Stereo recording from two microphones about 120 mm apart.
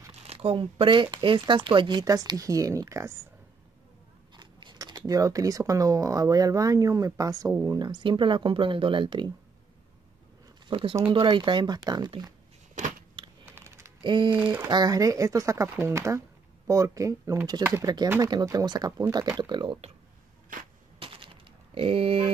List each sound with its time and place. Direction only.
0.2 s speech: 55° right (ahead or behind); by 3.2 s 25° right (ahead or behind)
4.4 s speech: 40° right (ahead or behind)
10.7 s speech: 45° right (ahead or behind)
13.5 s typing: 20° right (ahead or behind)
14.0 s speech: 40° right (ahead or behind)
14.3 s speech: 10° right (ahead or behind)
14.7 s speech: 35° right (ahead or behind)
19.3 s speech: 40° right (ahead or behind)
21.0 s typing: 45° right (ahead or behind)